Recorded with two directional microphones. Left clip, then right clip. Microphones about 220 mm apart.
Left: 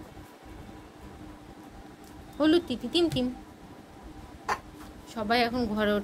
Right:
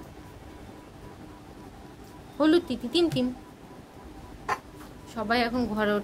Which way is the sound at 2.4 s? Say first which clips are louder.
Right 1 dB; centre (ahead or behind).